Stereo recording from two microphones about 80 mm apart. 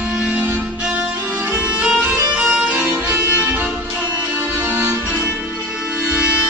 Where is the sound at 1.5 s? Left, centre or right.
Centre.